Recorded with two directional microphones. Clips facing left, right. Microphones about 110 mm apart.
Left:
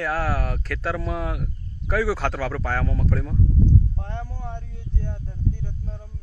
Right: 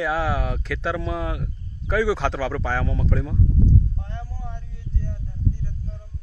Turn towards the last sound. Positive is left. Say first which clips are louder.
# even
turn(degrees=65)  # may be behind; listen again after turning